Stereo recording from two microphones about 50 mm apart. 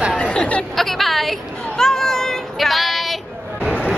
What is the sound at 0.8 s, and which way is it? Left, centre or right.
Speech, centre.